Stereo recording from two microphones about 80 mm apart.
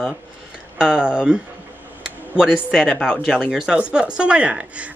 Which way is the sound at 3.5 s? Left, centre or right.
Centre.